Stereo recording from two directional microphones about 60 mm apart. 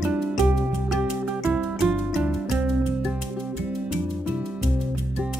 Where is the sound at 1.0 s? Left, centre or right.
Centre.